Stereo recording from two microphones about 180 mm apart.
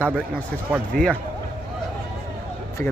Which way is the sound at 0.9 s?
55° right (ahead or behind).